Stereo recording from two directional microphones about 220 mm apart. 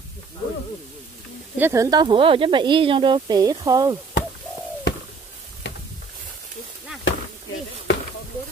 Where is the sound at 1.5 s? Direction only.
10° right (ahead or behind).